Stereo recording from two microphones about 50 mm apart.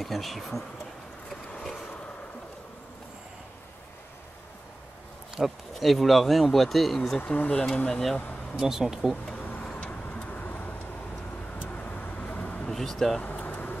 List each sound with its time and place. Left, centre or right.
0.0 s speech: centre
5.7 s speech: centre
7.2 s speech: left
7.7 s speech: centre
8.5 s speech: centre
9.3 s a sound: left
9.8 s vehicle: left
12.6 s speech: centre
13.2 s vehicle: left